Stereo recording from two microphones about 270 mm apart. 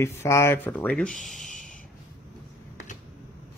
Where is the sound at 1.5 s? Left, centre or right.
Left.